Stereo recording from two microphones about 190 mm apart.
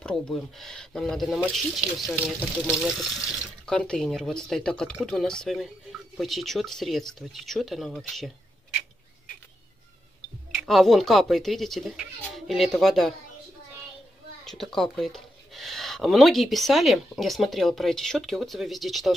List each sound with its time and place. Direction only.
0.0 s speech: 5° left (ahead or behind)
10.5 s speech: centre (ahead or behind)
14.4 s speech: centre (ahead or behind)